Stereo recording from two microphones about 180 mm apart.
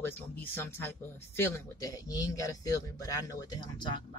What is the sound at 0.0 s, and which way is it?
Speech, 10° left (ahead or behind).